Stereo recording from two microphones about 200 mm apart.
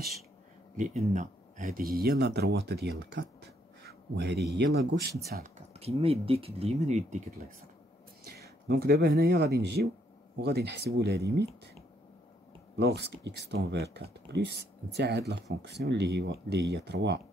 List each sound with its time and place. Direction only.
0.7 s speech: 40° right (ahead or behind)
5.7 s speech: 30° right (ahead or behind)
8.4 s speech: 50° right (ahead or behind)
12.7 s speech: 55° right (ahead or behind)